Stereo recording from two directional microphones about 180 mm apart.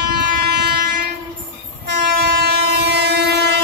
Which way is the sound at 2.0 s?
60° right (ahead or behind).